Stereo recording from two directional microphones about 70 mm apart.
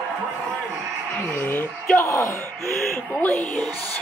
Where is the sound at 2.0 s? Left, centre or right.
Left.